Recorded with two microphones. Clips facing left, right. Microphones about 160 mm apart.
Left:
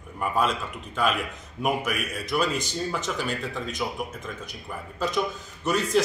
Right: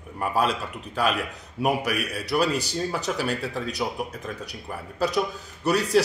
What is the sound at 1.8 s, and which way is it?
A man's voice, 35° right (ahead or behind).